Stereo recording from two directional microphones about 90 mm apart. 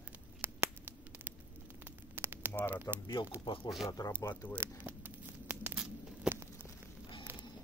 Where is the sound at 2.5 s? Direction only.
20° left (ahead or behind).